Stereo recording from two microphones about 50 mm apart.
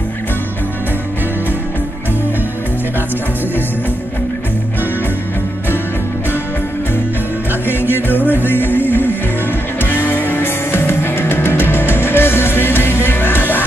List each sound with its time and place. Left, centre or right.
7.6 s music: left